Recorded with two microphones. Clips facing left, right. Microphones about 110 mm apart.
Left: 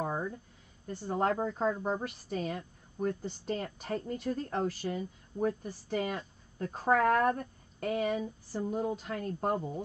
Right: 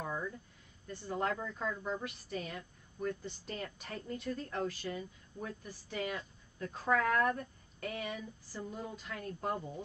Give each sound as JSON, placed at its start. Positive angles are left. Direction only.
{"t": 0.0, "sound": "a sound", "side_deg": 40}
{"t": 0.8, "sound": "a woman's voice", "side_deg": 40}
{"t": 8.6, "sound": "a woman's voice", "side_deg": 45}